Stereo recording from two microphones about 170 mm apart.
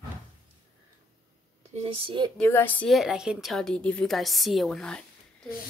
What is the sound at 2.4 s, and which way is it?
A woman's voice, 10° left (ahead or behind).